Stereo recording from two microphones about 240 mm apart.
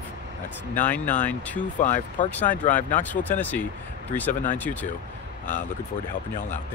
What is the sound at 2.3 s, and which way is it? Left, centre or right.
Speech, centre.